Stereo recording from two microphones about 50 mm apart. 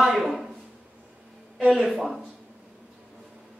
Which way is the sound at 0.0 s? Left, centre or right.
Centre.